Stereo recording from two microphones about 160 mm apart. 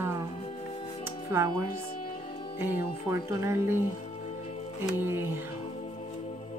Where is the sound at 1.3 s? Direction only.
15° right (ahead or behind).